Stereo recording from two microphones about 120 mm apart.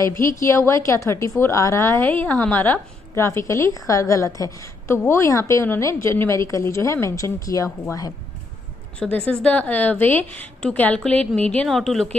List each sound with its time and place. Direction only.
0.0 s a woman's voice: 25° left (ahead or behind)
9.0 s a woman's voice: 10° left (ahead or behind)